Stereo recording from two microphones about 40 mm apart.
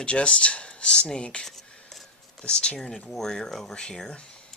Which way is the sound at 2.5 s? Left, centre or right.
Left.